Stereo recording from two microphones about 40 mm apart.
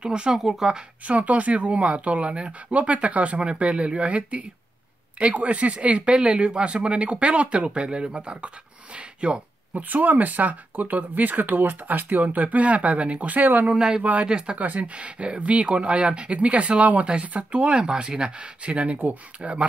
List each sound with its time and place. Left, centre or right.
0.0 s speech: right
0.4 s speech: centre
1.0 s speech: right
9.8 s speech: right
13.7 s speech: centre
14.6 s speech: right
18.9 s speech: right